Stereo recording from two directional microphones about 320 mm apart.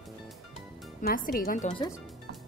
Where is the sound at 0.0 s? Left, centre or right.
Centre.